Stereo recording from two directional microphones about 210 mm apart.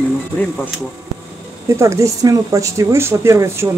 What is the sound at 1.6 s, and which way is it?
Speech, 15° right (ahead or behind).